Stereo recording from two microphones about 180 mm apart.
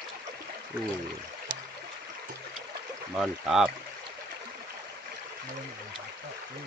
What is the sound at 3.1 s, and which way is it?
Speech, centre (ahead or behind).